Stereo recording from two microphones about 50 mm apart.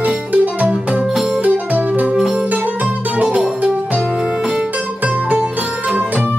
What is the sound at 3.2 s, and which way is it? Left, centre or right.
Music, right.